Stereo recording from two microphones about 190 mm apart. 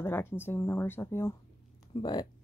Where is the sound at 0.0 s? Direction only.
10° left (ahead or behind).